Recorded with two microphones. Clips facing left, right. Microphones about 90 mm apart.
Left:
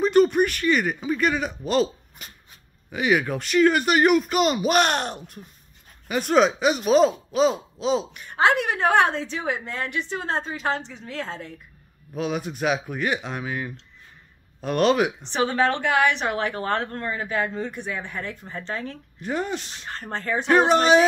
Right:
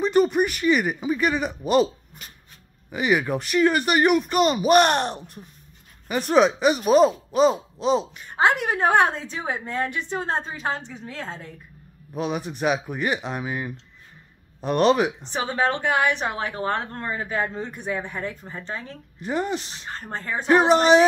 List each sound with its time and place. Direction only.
0.0 s speech: centre (ahead or behind)
2.9 s speech: centre (ahead or behind)
8.1 s a woman's voice: 20° right (ahead or behind)
9.1 s speech: 15° right (ahead or behind)
9.5 s a woman's voice: 25° right (ahead or behind)
12.1 s speech: centre (ahead or behind)
15.3 s a woman's voice: 15° right (ahead or behind)